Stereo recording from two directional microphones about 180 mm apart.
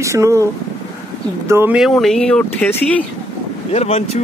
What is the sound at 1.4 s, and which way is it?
Speech, 15° right (ahead or behind).